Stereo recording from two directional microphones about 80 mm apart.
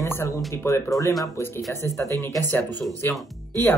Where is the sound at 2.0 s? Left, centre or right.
Right.